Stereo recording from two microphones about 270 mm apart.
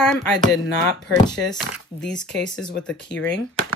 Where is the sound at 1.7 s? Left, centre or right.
Centre.